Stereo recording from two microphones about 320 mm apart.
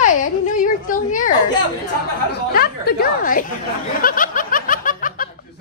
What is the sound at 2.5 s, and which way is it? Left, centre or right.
Speech, left.